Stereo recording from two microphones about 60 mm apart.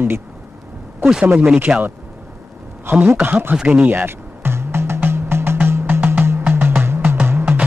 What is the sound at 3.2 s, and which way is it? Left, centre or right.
Speech, right.